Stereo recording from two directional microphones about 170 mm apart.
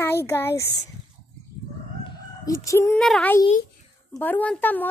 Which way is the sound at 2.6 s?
15° left (ahead or behind).